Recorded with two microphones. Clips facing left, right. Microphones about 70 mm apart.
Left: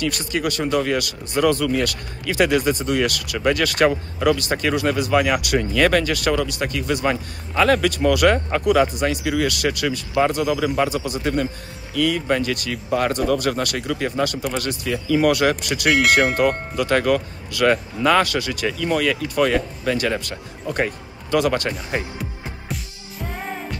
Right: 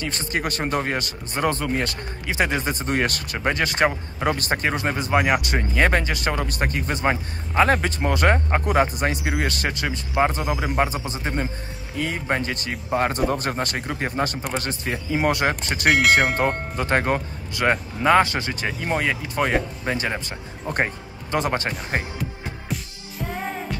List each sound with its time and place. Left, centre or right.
0.0 s speech: right
15.9 s speech: centre
16.3 s speech: right
22.2 s music: centre